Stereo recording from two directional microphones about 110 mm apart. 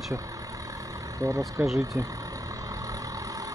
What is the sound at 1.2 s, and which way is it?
Speech, 30° right (ahead or behind).